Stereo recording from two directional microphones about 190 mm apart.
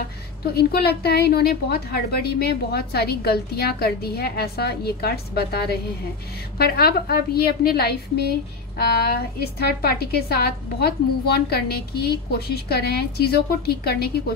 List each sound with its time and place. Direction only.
0.6 s a woman's voice: 55° left (ahead or behind)